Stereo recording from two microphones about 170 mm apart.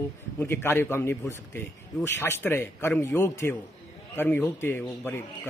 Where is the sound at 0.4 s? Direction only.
15° left (ahead or behind).